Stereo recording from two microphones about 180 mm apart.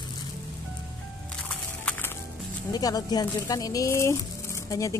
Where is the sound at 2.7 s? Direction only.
20° left (ahead or behind).